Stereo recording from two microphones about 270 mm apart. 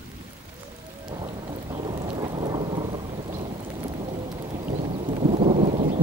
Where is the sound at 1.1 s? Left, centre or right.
Centre.